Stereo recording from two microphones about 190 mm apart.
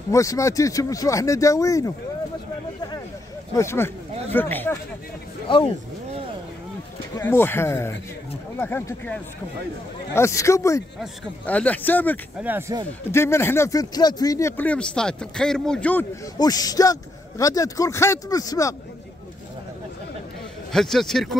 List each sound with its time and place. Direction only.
0.1 s speech: 15° left (ahead or behind)
3.5 s speech: 15° left (ahead or behind)
7.2 s speech: 10° left (ahead or behind)
12.4 s speech: 10° right (ahead or behind)
13.1 s speech: 15° left (ahead or behind)
16.3 s speech: 20° left (ahead or behind)
20.7 s a man's voice: centre (ahead or behind)